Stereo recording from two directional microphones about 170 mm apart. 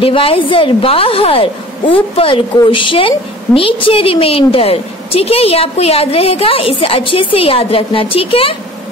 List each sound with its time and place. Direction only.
0.0 s a woman's voice: 35° left (ahead or behind)